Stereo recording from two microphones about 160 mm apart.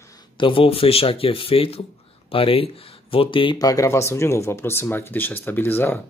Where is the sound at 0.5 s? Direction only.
35° left (ahead or behind).